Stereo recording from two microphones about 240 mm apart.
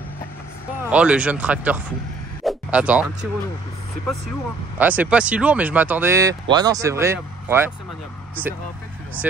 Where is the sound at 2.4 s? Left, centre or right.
Centre.